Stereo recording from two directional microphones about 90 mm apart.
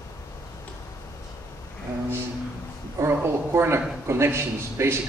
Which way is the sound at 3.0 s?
30° right (ahead or behind).